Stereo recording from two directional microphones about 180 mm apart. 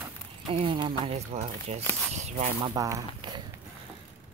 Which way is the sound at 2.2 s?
40° right (ahead or behind).